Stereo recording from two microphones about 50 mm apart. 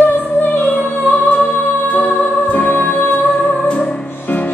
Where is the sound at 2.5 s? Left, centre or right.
Left.